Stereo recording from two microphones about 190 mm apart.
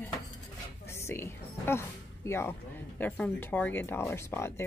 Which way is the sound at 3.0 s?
10° left (ahead or behind).